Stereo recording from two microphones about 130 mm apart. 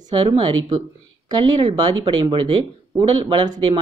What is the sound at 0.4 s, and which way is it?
Speech, 35° right (ahead or behind).